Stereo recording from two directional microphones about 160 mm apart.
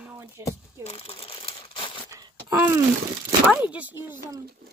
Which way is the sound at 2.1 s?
15° right (ahead or behind).